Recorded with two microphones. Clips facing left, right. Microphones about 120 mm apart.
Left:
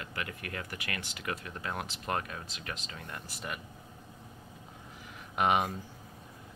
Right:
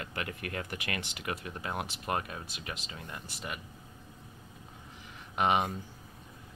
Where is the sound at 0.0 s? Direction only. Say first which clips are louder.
Right 1 dB; 35° right (ahead or behind).